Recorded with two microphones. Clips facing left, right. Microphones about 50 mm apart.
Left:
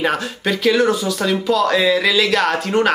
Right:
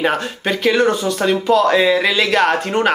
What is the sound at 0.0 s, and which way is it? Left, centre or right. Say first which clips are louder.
Speech: right 1 dB; centre.